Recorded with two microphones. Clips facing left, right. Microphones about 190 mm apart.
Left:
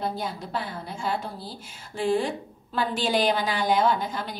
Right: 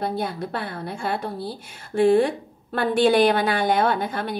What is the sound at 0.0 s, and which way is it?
A woman's voice, 60° right (ahead or behind).